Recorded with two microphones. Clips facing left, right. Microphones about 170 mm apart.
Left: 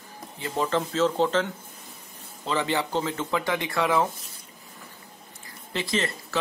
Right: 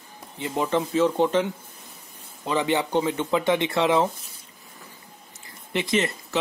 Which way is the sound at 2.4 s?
20° right (ahead or behind).